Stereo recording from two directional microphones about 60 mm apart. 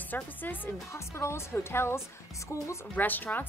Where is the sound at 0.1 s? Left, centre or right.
Left.